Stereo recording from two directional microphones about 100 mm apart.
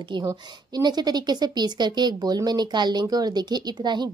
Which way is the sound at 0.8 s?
45° right (ahead or behind).